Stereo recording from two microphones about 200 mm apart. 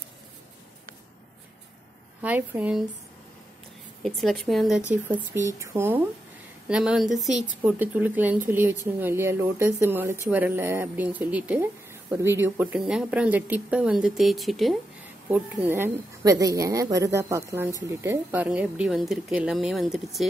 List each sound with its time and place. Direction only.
2.2 s speech: 10° right (ahead or behind)
4.0 s speech: centre (ahead or behind)